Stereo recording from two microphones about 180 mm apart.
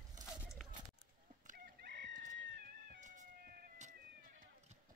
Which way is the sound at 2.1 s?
45° right (ahead or behind).